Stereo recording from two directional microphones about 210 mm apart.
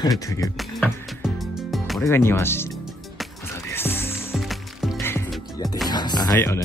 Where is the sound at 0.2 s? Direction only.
15° left (ahead or behind).